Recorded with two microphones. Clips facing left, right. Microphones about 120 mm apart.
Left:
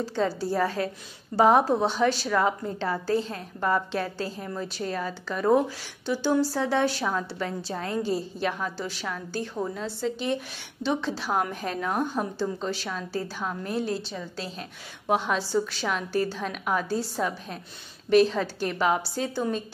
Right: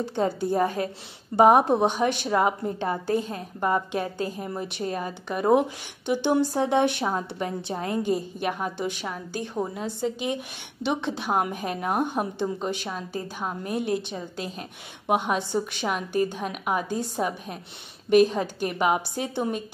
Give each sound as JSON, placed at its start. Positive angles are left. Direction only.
{"t": 0.0, "sound": "a woman's voice", "side_deg": -20}